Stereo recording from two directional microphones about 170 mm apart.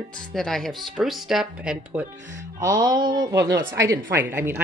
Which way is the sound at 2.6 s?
20° right (ahead or behind).